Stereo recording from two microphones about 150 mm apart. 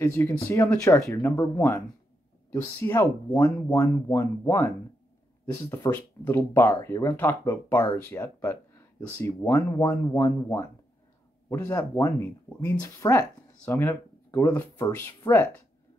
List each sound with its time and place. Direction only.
0.0 s speech: 15° left (ahead or behind)
5.9 s speech: 15° left (ahead or behind)
15.2 s speech: 30° left (ahead or behind)